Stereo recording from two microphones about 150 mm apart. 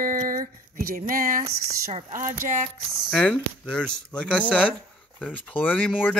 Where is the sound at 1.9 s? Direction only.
55° right (ahead or behind).